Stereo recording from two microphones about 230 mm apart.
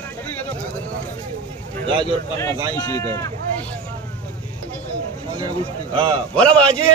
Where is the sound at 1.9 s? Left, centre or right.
Right.